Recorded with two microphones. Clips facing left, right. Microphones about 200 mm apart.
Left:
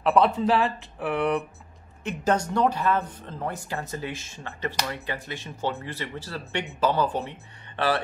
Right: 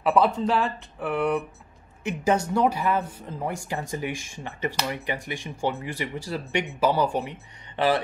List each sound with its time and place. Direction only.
0.0 s speech: centre (ahead or behind)